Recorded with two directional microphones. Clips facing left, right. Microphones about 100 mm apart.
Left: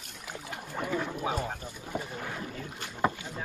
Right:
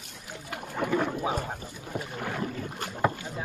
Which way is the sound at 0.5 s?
60° right (ahead or behind).